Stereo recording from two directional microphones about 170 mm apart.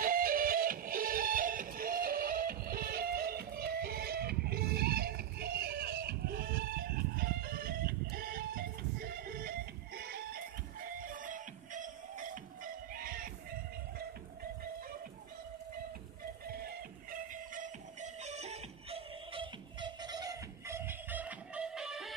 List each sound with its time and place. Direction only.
0.0 s music: 55° right (ahead or behind)
16.4 s music: 65° right (ahead or behind); by 22.1 s 5° right (ahead or behind)